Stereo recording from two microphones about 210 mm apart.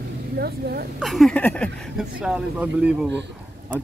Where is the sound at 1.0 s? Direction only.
Centre (ahead or behind).